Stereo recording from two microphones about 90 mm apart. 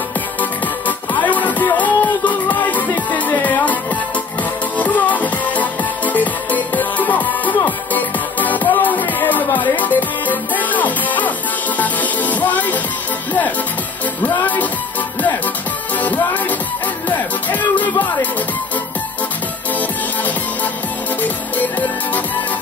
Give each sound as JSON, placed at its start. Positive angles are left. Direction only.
{"t": 0.4, "sound": "music", "side_deg": 20}
{"t": 14.2, "sound": "music", "side_deg": 20}
{"t": 16.0, "sound": "music", "side_deg": 20}
{"t": 21.2, "sound": "music", "side_deg": 20}